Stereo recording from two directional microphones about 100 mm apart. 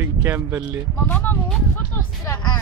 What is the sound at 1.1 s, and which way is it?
Speech, 20° left (ahead or behind).